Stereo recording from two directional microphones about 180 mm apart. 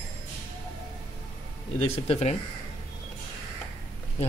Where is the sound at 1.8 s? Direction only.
35° left (ahead or behind).